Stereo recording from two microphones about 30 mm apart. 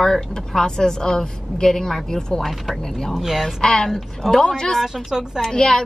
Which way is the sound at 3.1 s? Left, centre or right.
Centre.